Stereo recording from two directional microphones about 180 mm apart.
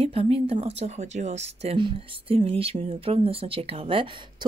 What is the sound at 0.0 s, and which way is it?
A woman's voice, 30° right (ahead or behind).